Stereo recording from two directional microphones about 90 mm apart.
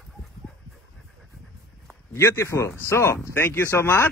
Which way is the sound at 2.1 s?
30° left (ahead or behind).